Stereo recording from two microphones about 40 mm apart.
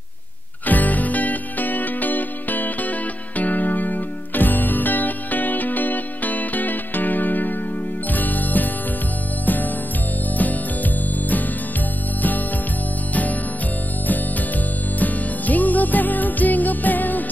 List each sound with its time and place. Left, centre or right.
0.7 s music: left
10.3 s music: left
15.0 s music: left